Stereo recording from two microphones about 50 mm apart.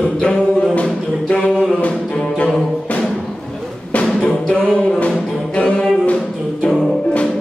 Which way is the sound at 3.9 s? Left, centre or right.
Left.